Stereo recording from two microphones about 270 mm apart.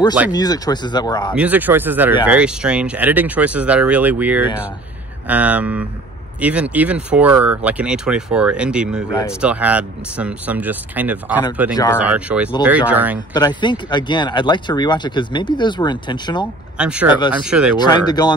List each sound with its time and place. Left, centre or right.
0.3 s speech: centre
1.3 s speech: centre
9.1 s speech: centre
9.4 s speech: centre
11.7 s speech: centre
12.0 s speech: centre
13.3 s speech: centre
16.7 s speech: centre
17.7 s speech: centre